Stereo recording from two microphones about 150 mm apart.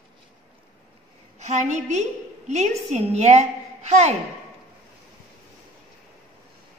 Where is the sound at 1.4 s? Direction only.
50° right (ahead or behind).